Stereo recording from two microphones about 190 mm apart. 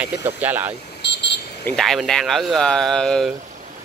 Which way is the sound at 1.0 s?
65° left (ahead or behind).